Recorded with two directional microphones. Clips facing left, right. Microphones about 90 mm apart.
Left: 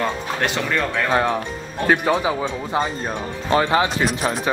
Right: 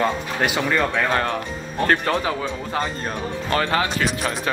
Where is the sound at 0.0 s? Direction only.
10° right (ahead or behind).